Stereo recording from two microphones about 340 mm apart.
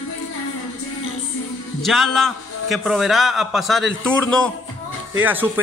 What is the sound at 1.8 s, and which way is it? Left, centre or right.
A man's voice, centre.